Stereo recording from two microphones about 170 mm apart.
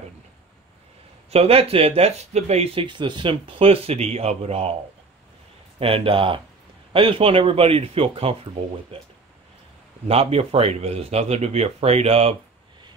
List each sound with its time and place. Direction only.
1.3 s speech: 35° right (ahead or behind)
5.8 s speech: 35° right (ahead or behind)